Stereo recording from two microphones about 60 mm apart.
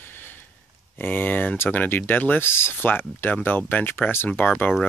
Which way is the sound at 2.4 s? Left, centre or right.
Left.